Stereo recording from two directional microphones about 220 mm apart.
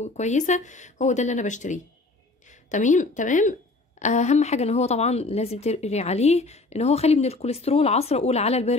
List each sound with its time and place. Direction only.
0.0 s speech: 30° left (ahead or behind)